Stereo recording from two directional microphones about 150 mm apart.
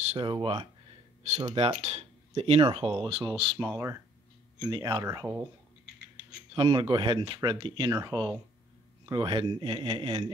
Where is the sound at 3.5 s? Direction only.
10° right (ahead or behind).